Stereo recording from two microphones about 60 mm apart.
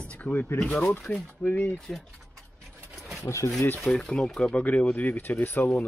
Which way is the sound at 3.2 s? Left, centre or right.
Left.